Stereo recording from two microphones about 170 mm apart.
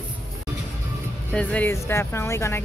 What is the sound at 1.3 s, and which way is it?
Speech, 10° left (ahead or behind).